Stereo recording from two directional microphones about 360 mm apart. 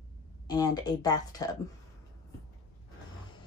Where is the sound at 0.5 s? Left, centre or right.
Centre.